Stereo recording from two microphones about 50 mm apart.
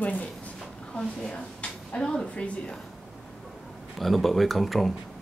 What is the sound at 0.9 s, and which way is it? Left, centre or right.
A woman's voice, centre.